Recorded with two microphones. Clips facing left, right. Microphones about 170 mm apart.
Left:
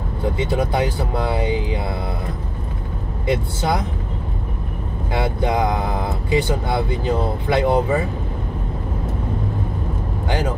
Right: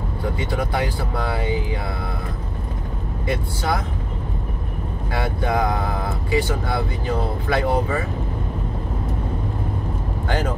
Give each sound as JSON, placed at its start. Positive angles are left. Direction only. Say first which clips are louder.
{"t": 0.4, "sound": "speech", "louder": "left 4 dB", "side_deg": 20}
{"t": 3.3, "sound": "speech", "louder": "left 3 dB", "side_deg": 20}
{"t": 5.1, "sound": "speech", "louder": "left 2 dB", "side_deg": 20}
{"t": 10.2, "sound": "speech", "louder": "left 1 dB", "side_deg": 10}